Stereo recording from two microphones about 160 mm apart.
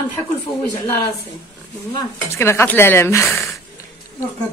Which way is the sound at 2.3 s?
15° left (ahead or behind).